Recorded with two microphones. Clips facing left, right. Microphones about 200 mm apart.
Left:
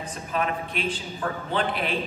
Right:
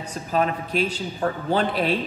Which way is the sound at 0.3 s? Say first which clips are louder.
Right 5 dB; 35° right (ahead or behind).